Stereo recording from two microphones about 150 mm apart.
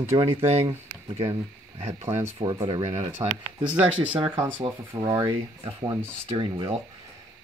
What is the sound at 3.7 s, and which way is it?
Speech, 10° right (ahead or behind).